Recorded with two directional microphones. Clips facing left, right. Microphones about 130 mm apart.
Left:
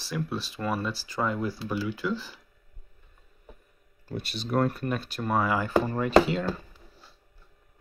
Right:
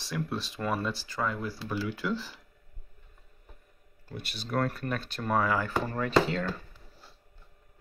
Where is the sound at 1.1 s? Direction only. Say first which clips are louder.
Left 7 dB; 20° left (ahead or behind); by 2.4 s centre (ahead or behind).